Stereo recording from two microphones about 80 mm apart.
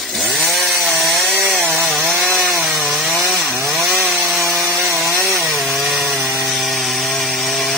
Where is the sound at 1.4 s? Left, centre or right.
Centre.